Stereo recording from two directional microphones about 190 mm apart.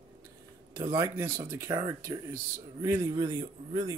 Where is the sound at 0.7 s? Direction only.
20° right (ahead or behind).